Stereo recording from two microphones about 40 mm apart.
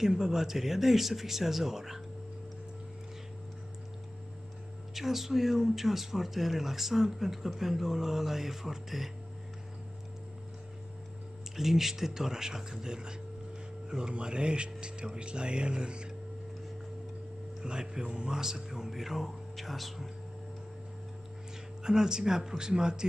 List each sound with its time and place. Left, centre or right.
0.0 s speech: centre
4.9 s speech: centre
11.5 s speech: centre; by 16.1 s right
17.6 s speech: centre
21.8 s speech: centre